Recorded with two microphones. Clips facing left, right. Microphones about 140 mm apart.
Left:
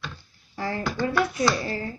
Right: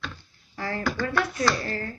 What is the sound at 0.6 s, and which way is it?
Speech, 20° left (ahead or behind).